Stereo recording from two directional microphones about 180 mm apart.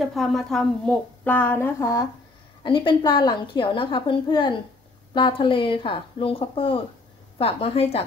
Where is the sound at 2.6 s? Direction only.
25° left (ahead or behind).